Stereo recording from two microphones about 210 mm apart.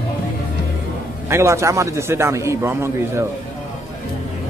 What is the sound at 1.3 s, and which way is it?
A man's voice, 15° right (ahead or behind).